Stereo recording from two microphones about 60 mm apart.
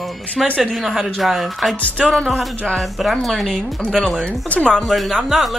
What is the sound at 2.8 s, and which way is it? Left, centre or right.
Speech, centre.